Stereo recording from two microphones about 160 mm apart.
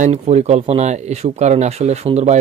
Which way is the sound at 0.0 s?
45° right (ahead or behind).